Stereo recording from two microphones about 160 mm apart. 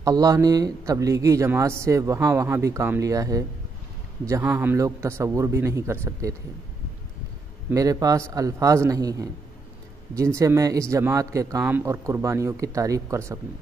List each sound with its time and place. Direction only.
0.0 s a man's voice: 20° right (ahead or behind)
7.7 s speech: 20° right (ahead or behind)